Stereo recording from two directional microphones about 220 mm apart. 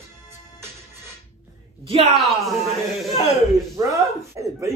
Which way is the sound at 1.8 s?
30° right (ahead or behind).